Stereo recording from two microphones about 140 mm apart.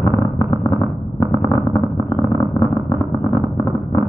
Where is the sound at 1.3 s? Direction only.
25° left (ahead or behind).